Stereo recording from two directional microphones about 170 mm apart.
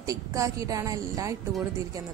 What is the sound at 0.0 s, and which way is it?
Speech, 20° right (ahead or behind).